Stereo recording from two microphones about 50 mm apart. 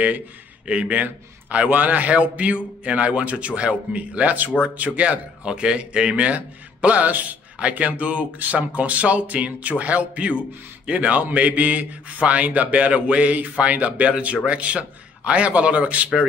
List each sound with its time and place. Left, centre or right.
0.7 s speech: right